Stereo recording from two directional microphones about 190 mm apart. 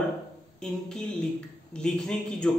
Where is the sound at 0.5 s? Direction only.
5° left (ahead or behind).